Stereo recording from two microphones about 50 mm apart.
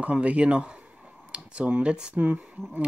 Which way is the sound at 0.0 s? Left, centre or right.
Right.